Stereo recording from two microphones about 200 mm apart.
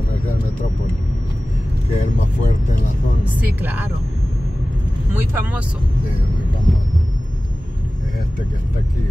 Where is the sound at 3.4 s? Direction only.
10° right (ahead or behind).